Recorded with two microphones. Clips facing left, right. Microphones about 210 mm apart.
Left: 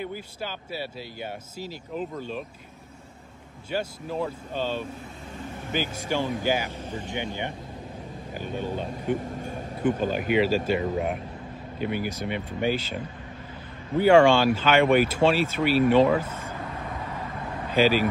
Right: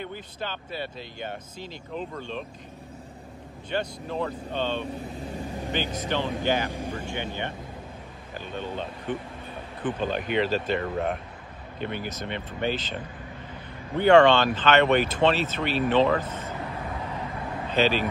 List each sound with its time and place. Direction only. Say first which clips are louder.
0.0 s speech: left 1 dB; 10° left (ahead or behind)
3.7 s speech: even; 5° left (ahead or behind)
9.1 s a sound: left 6 dB; 45° left (ahead or behind)
9.9 s speech: right 1 dB; 10° left (ahead or behind)
17.6 s speech: left 3 dB; 10° left (ahead or behind)